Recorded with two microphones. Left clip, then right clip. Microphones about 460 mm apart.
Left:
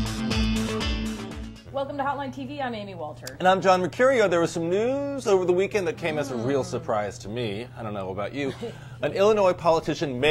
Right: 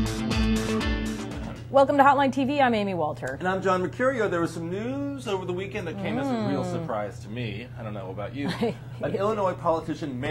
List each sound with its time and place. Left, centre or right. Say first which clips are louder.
0.0 s music: even; centre
1.8 s speech: right 10 dB; right
3.4 s speech: left 6 dB; left
9.2 s speech: left 7 dB; left